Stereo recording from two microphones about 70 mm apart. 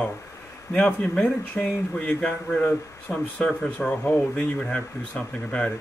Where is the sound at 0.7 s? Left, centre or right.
Centre.